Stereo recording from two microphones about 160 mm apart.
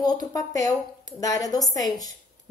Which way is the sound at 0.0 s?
25° left (ahead or behind).